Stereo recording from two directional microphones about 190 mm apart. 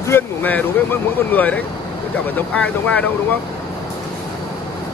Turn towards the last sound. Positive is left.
turn(degrees=5)  # may be behind; listen again after turning